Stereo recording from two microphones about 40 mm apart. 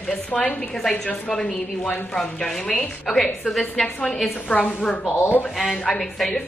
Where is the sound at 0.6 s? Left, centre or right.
Centre.